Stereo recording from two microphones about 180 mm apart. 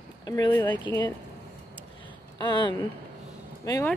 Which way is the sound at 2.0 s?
25° left (ahead or behind).